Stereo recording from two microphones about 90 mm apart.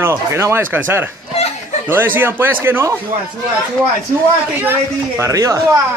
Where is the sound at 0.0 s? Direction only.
30° right (ahead or behind).